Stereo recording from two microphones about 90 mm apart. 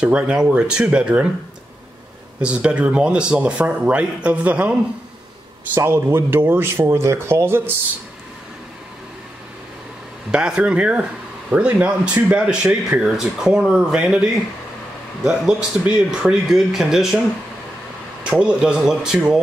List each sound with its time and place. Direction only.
0.0 s speech: 10° right (ahead or behind)
2.4 s speech: 15° right (ahead or behind)
5.8 s speech: 30° right (ahead or behind)
10.3 s speech: 10° right (ahead or behind)
18.4 s speech: 10° right (ahead or behind)